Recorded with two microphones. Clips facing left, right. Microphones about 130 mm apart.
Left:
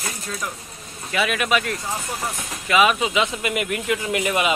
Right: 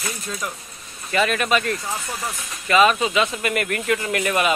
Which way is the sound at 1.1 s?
5° left (ahead or behind).